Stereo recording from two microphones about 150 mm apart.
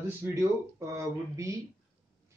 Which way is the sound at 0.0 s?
15° right (ahead or behind).